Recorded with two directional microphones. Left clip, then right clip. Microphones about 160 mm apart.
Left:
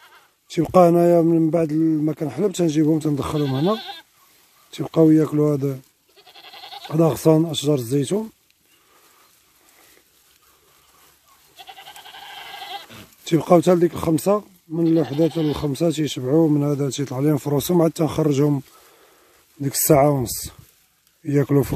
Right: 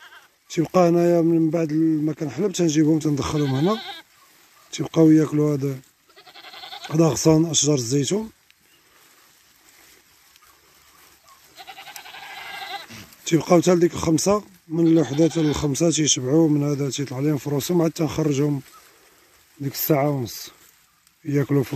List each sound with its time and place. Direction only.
0.5 s speech: 10° left (ahead or behind)
3.3 s speech: 20° left (ahead or behind)
4.6 s goat: centre (ahead or behind); by 6.9 s 20° left (ahead or behind)
6.9 s speech: 5° left (ahead or behind)
11.5 s goat: 10° left (ahead or behind)
13.2 s speech: 10° left (ahead or behind)
19.6 s speech: 25° left (ahead or behind)